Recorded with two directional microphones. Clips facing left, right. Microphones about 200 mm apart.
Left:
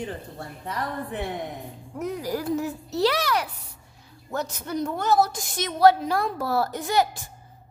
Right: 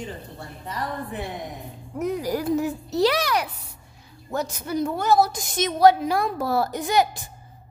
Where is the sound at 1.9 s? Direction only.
15° right (ahead or behind).